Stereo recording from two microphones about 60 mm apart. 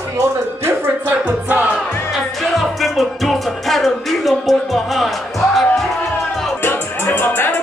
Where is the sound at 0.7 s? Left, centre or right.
Right.